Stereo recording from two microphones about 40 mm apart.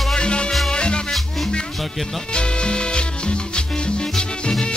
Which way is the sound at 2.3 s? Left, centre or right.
Left.